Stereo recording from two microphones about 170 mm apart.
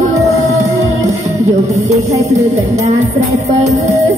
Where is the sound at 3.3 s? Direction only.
45° right (ahead or behind).